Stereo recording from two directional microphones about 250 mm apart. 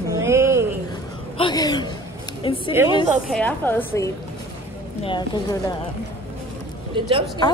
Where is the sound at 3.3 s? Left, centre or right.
Centre.